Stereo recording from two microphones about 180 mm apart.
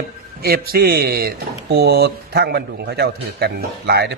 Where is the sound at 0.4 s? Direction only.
55° right (ahead or behind).